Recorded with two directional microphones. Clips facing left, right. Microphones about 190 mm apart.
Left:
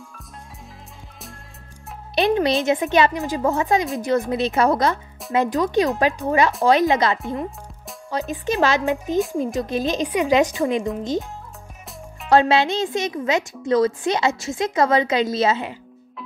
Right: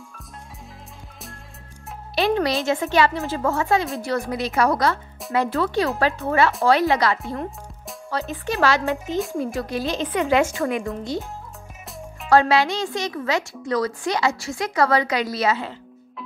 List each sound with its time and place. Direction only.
2.1 s a woman's voice: 20° left (ahead or behind)
12.3 s a woman's voice: 20° left (ahead or behind)